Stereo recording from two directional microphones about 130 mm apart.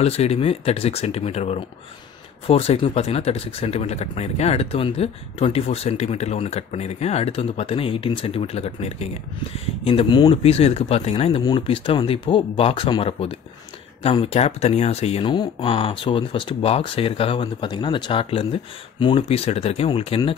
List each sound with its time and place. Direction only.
0.0 s speech: 50° left (ahead or behind)
9.8 s speech: 40° left (ahead or behind)
10.3 s speech: 50° left (ahead or behind)
11.4 s speech: 40° left (ahead or behind)